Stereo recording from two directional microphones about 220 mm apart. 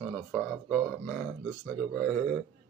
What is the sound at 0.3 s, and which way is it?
Speech, 5° left (ahead or behind).